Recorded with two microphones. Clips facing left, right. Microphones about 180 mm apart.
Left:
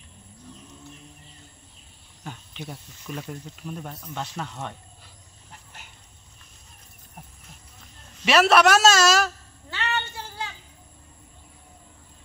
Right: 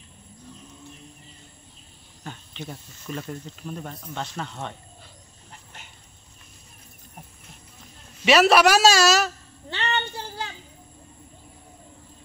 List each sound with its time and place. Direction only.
2.2 s speech: 5° left (ahead or behind)
8.3 s a man's voice: 5° right (ahead or behind)
9.7 s child singing: 30° right (ahead or behind)